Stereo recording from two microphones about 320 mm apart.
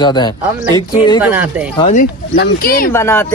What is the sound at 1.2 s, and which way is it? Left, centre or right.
Speech, centre.